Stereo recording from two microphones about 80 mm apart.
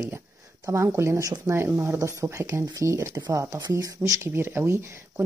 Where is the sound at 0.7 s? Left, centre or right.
Right.